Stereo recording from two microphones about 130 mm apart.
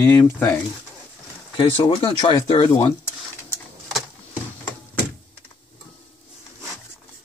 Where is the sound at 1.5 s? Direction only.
35° left (ahead or behind).